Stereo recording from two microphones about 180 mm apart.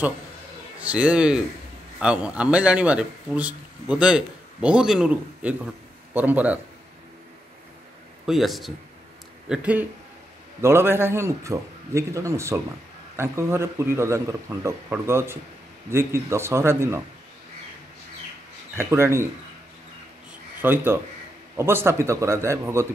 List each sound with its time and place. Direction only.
0.7 s a man's voice: 5° right (ahead or behind)
8.3 s a man's voice: centre (ahead or behind)
18.8 s a man's voice: 15° right (ahead or behind)
20.6 s a man's voice: 10° right (ahead or behind)